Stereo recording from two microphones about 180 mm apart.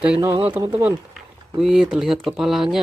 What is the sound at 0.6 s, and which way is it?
Speech, 20° right (ahead or behind).